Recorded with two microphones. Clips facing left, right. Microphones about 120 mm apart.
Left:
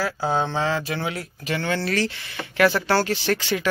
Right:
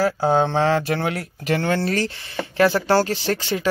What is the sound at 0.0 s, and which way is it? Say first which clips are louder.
Speech: right 5 dB; 45° right (ahead or behind).